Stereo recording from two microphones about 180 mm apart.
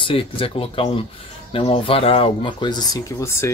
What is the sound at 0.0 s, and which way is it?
Speech, 30° left (ahead or behind).